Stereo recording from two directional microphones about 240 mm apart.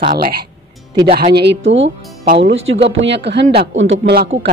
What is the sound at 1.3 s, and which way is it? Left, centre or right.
Speech, right.